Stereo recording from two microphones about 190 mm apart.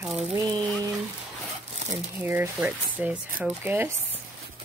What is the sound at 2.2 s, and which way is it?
Speech, 10° right (ahead or behind).